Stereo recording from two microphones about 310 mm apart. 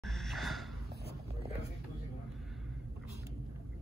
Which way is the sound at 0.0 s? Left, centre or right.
Centre.